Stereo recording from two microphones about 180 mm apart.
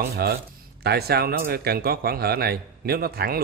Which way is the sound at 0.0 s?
60° right (ahead or behind).